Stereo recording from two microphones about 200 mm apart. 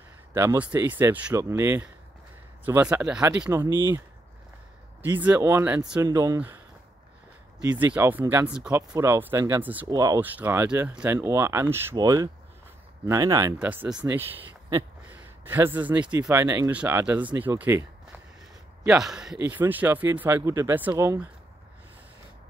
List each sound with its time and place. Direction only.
0.3 s speech: 15° right (ahead or behind)
5.2 s speech: 10° right (ahead or behind)
7.6 s speech: 5° right (ahead or behind)